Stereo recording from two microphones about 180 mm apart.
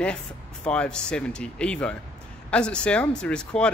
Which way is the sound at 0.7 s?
5° left (ahead or behind).